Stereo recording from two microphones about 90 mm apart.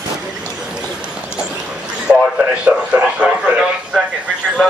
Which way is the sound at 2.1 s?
10° right (ahead or behind).